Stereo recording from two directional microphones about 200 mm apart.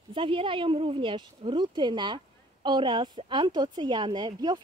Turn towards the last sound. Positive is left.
turn(degrees=-20)  # may be behind; listen again after turning